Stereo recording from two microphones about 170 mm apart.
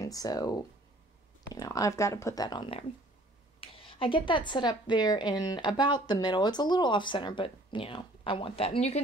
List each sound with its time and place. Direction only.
0.0 s a woman's voice: 20° left (ahead or behind); by 9.0 s 40° left (ahead or behind)